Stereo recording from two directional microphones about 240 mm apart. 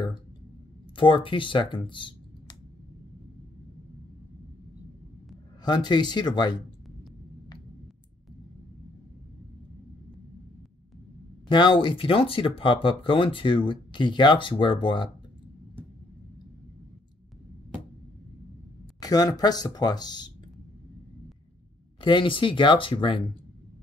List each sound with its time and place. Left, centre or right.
0.9 s speech: centre
5.6 s speech: centre
11.4 s speech: centre
18.9 s speech: centre
22.0 s speech: left